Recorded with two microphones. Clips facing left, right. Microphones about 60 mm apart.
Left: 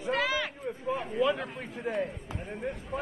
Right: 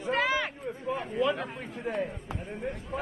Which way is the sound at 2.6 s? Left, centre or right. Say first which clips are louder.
Left 1 dB; centre.